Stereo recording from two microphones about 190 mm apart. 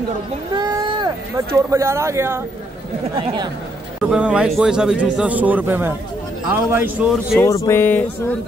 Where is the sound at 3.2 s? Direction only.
30° right (ahead or behind).